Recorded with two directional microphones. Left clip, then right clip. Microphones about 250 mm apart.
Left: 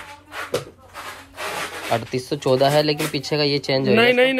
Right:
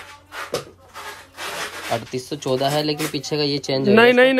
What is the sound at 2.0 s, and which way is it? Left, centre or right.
Speech, centre.